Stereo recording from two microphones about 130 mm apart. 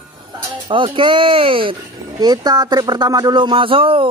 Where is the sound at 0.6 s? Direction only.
40° right (ahead or behind).